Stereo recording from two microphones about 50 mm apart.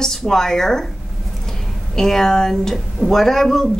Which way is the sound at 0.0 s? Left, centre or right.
Centre.